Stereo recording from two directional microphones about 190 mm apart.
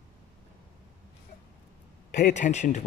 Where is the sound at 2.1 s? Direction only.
40° left (ahead or behind).